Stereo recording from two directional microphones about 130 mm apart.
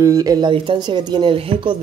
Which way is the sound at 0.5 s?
40° right (ahead or behind).